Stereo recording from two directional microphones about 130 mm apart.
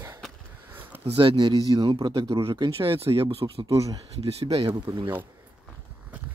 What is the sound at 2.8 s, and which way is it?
Speech, 45° right (ahead or behind).